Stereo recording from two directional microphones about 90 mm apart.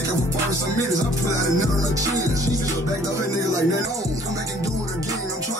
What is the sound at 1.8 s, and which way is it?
Music, 40° right (ahead or behind).